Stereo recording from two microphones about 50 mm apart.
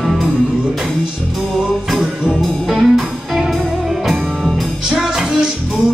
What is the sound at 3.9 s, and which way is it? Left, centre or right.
Music, centre.